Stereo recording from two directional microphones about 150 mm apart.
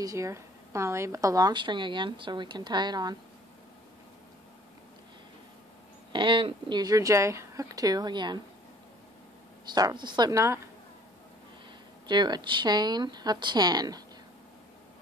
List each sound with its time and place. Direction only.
0.0 s a woman's voice: 20° right (ahead or behind)
6.1 s a woman's voice: 35° right (ahead or behind)
9.8 s a woman's voice: 30° right (ahead or behind)
12.1 s a woman's voice: 30° right (ahead or behind)